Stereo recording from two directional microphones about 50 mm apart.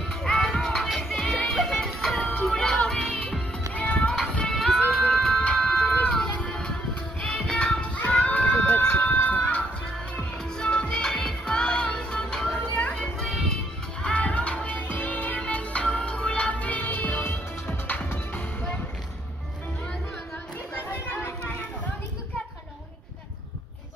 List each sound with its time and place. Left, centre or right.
0.2 s music: centre
3.7 s music: left
4.1 s music: centre
5.6 s a sound: centre
6.3 s music: left
10.6 s music: centre
14.0 s music: left